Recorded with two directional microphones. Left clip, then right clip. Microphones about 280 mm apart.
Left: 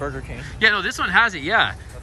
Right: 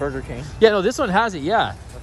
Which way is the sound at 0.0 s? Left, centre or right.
Right.